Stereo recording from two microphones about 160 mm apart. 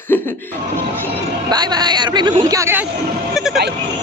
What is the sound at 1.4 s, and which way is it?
A woman's voice, 25° right (ahead or behind).